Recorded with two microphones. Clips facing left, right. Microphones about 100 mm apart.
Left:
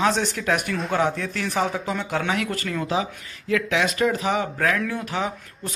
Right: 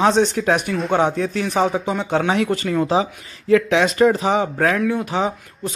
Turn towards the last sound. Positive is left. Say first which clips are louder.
# right 6 dB
turn(degrees=-25)  # may be behind; listen again after turning